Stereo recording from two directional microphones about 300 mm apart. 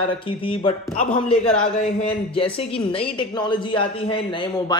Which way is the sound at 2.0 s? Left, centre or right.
Centre.